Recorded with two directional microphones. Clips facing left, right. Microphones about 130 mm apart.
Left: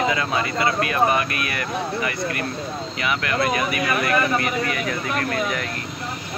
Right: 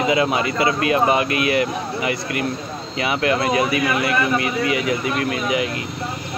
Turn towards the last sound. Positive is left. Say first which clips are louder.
# right 3 dB
turn(degrees=-10)  # may be behind; listen again after turning